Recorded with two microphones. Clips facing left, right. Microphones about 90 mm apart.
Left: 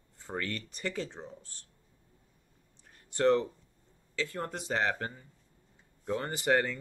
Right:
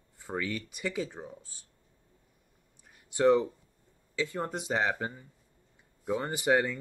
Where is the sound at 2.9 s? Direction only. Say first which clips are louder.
Right 2 dB; 15° right (ahead or behind).